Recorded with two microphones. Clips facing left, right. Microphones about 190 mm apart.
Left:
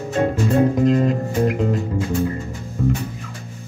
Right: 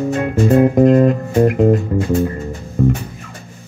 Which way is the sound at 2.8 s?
55° right (ahead or behind).